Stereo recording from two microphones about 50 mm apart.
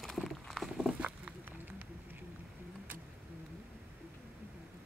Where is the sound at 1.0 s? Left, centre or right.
Right.